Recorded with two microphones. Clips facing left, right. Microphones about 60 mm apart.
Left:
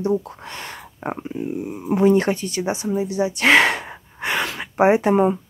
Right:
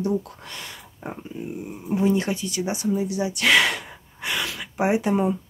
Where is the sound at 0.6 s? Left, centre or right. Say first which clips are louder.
Left 8 dB; left.